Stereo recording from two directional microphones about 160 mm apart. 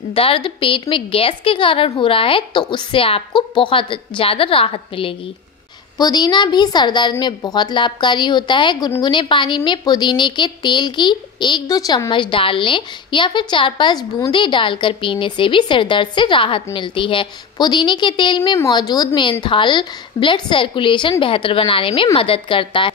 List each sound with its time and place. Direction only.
0.1 s a woman's voice: 35° left (ahead or behind)